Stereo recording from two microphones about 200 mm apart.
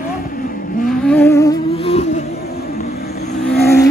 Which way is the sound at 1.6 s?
30° left (ahead or behind).